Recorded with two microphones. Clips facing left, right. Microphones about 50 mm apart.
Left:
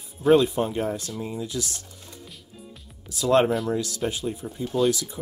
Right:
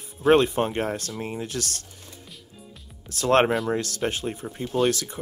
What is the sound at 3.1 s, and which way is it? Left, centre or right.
Speech, right.